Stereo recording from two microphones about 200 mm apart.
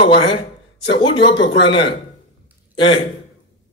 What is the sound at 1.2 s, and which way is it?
Speech, 65° left (ahead or behind).